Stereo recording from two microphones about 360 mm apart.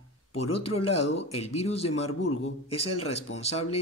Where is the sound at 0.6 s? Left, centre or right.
Centre.